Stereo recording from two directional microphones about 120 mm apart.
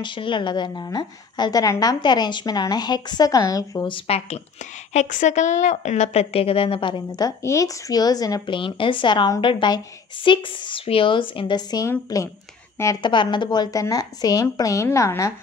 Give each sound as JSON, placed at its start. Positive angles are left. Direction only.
{"t": 0.0, "sound": "a woman's voice", "side_deg": 40}
{"t": 3.8, "sound": "a woman's voice", "side_deg": 50}